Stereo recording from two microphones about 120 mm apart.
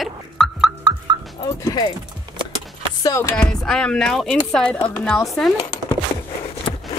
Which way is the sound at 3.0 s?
25° left (ahead or behind).